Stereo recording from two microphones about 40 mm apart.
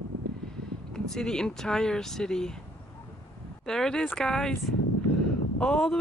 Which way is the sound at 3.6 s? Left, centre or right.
Centre.